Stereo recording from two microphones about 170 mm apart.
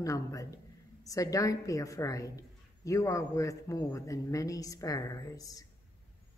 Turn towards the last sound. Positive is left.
turn(degrees=20)  # may be behind; listen again after turning